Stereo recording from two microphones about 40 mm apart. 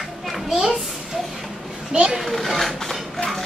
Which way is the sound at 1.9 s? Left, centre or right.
Centre.